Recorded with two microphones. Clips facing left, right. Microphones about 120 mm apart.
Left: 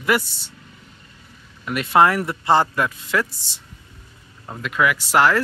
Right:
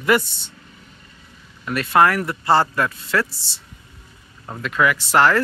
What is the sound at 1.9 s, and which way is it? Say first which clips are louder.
Speech: even; 20° left (ahead or behind).